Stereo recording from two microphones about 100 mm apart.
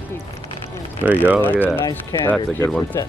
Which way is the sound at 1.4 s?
20° left (ahead or behind).